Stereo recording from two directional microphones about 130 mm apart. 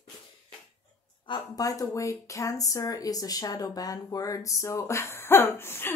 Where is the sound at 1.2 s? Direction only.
30° left (ahead or behind).